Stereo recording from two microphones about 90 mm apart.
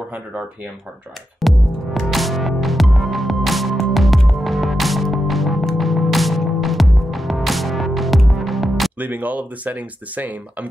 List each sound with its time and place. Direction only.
1.4 s music: centre (ahead or behind)
9.0 s speech: 20° right (ahead or behind)